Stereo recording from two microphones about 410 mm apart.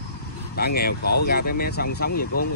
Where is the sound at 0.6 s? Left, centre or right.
Left.